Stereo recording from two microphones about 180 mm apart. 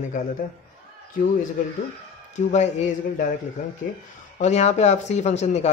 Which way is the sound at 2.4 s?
40° left (ahead or behind).